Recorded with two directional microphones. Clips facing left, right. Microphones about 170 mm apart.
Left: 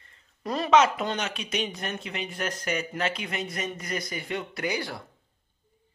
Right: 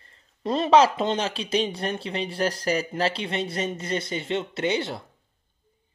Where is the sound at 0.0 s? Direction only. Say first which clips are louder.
Right 5 dB; 30° right (ahead or behind).